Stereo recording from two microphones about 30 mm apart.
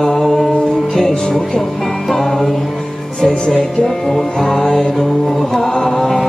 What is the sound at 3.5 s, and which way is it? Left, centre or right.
Music, centre.